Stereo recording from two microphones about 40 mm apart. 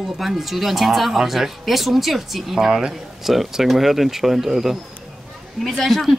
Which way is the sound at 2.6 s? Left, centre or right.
Centre.